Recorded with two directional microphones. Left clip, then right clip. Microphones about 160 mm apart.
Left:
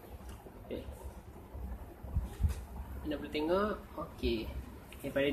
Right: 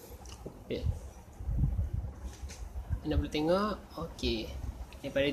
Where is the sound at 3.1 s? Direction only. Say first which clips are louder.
Right 3 dB; 55° right (ahead or behind).